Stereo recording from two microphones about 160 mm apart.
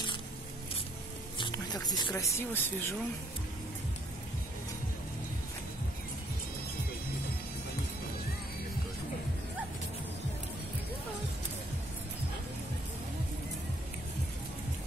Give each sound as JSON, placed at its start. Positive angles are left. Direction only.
{"t": 1.4, "sound": "speech", "side_deg": 25}